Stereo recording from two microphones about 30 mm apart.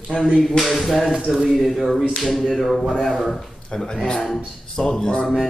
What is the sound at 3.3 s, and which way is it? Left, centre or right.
Speech, centre.